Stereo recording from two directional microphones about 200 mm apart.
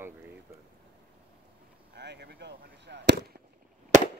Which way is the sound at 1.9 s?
55° right (ahead or behind).